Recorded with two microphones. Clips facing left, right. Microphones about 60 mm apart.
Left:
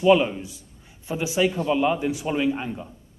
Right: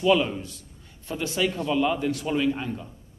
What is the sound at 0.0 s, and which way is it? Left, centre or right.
A man's voice, centre.